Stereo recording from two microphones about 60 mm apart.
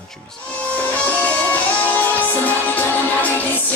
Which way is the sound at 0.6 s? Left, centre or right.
Left.